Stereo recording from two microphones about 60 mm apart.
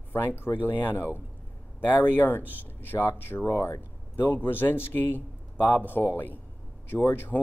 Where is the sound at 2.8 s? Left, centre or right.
Left.